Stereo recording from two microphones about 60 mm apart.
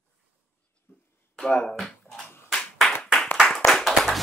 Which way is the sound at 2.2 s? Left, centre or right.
Left.